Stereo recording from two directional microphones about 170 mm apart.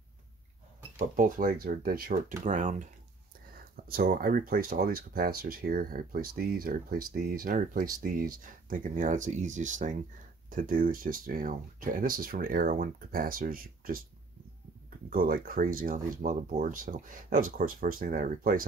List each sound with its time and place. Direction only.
0.9 s speech: 50° right (ahead or behind)
3.5 s speech: 60° right (ahead or behind)
15.0 s speech: 55° right (ahead or behind)